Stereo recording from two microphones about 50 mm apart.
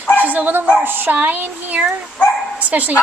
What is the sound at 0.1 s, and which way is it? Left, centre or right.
Dog, right.